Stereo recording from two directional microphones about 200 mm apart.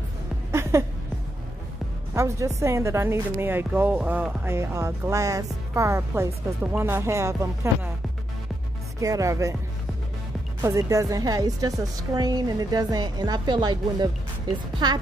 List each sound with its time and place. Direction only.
0.5 s a sound: 15° right (ahead or behind)
2.1 s a woman's voice: 15° right (ahead or behind)
9.0 s a woman's voice: 15° right (ahead or behind)
10.6 s a woman's voice: 15° right (ahead or behind)